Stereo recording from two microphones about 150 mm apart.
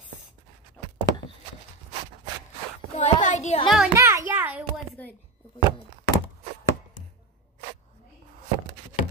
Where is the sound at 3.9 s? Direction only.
20° right (ahead or behind).